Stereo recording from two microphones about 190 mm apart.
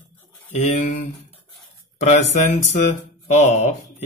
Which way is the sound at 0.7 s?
40° left (ahead or behind).